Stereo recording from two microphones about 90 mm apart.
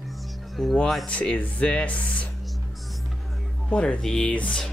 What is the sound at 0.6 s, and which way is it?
Speech, centre (ahead or behind).